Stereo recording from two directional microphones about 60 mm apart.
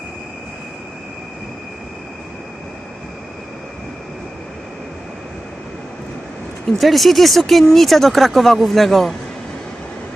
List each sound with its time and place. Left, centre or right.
6.8 s speech: centre